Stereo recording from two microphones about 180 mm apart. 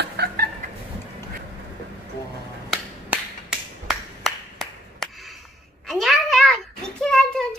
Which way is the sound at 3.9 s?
Centre (ahead or behind).